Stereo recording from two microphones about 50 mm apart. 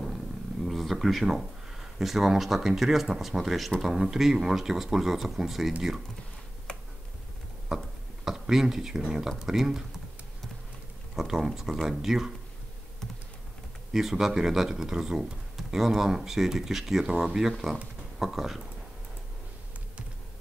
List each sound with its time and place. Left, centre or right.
0.7 s a sound: centre
2.0 s speech: centre
6.7 s finger snapping: centre
7.7 s speech: centre
11.1 s speech: centre
13.9 s speech: centre